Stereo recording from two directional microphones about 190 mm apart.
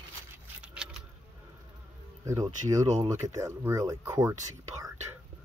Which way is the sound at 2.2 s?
20° right (ahead or behind).